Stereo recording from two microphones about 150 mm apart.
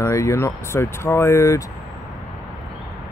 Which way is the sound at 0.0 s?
20° left (ahead or behind).